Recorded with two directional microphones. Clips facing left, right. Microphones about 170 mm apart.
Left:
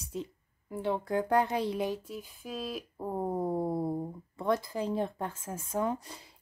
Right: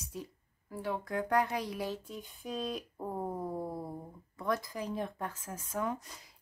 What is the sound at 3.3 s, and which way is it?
Music, 30° left (ahead or behind).